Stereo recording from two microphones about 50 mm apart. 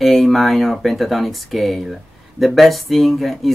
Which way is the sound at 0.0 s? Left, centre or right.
Centre.